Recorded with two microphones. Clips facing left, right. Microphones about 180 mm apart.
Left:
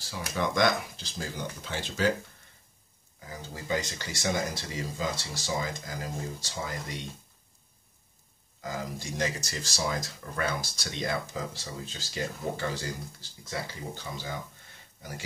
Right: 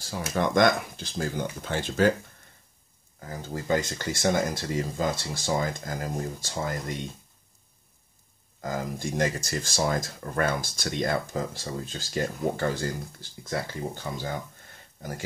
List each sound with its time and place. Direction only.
0.3 s speech: 50° right (ahead or behind)
3.3 s speech: 50° right (ahead or behind)
8.5 s speech: 50° right (ahead or behind)